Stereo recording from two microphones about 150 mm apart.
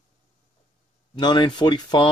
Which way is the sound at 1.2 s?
30° left (ahead or behind).